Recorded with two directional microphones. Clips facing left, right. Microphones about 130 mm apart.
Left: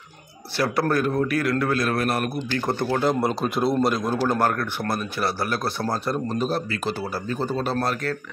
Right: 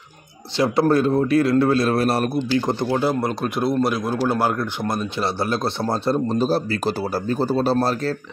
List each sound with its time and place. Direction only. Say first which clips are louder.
0.6 s speech: right 5 dB; 25° right (ahead or behind)
2.6 s speech: right 2 dB; 15° right (ahead or behind)
3.2 s a man's voice: even; centre (ahead or behind); by 8.2 s 30° right (ahead or behind)